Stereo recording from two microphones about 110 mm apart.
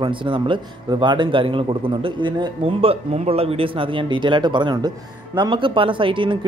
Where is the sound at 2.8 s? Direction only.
65° right (ahead or behind).